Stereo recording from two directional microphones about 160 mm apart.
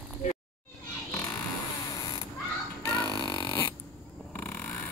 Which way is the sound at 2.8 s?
25° left (ahead or behind).